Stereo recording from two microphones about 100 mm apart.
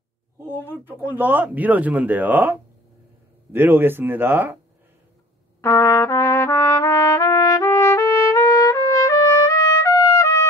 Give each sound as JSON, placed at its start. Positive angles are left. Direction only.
{"t": 0.8, "sound": "speech", "side_deg": -20}
{"t": 5.6, "sound": "trumpet", "side_deg": 30}